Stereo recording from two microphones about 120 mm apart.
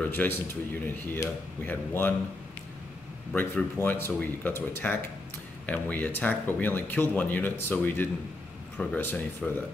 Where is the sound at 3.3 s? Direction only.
15° left (ahead or behind).